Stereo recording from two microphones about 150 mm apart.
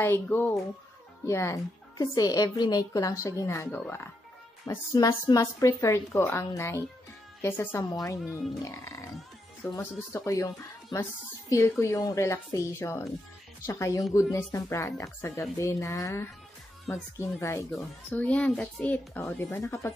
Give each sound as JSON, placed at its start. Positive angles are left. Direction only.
{"t": 0.0, "sound": "speech", "side_deg": 15}